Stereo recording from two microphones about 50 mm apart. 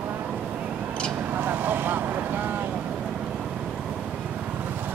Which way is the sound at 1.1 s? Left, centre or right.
Right.